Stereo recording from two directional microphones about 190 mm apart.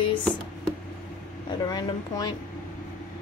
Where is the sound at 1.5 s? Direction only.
20° left (ahead or behind).